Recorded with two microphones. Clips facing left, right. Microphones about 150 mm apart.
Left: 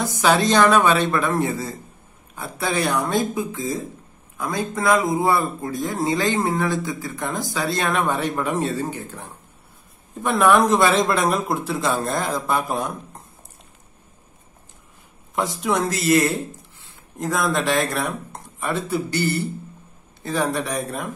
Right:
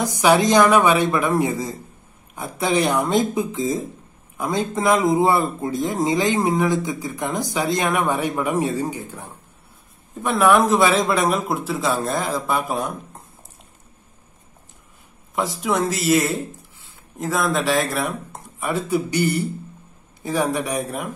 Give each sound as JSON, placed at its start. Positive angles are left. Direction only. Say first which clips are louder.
{"t": 0.0, "sound": "speech", "louder": "right 2 dB", "side_deg": -15}
{"t": 10.2, "sound": "a man's voice", "louder": "even", "side_deg": 0}
{"t": 15.3, "sound": "a man's voice", "louder": "even", "side_deg": 0}
{"t": 20.5, "sound": "speech", "louder": "right 1 dB", "side_deg": -10}